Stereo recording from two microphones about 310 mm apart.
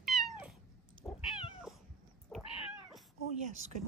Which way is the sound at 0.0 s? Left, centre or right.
Centre.